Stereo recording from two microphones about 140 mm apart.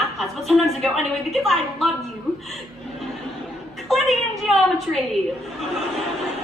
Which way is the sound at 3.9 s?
Centre (ahead or behind).